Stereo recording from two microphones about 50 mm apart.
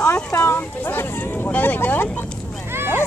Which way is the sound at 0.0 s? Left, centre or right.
Left.